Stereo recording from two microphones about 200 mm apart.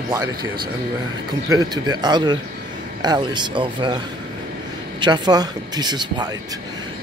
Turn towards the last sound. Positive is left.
turn(degrees=-20)  # may be behind; listen again after turning